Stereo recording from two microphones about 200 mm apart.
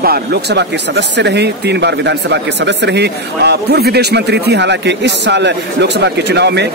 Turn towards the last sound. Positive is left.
turn(degrees=-60)  # may be behind; listen again after turning